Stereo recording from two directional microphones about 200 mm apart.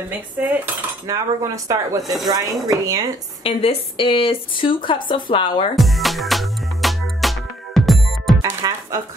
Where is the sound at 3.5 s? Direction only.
30° left (ahead or behind).